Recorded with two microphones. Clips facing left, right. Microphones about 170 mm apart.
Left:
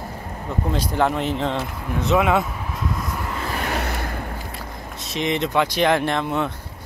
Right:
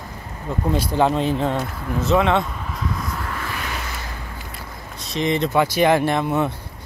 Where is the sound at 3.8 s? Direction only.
55° left (ahead or behind).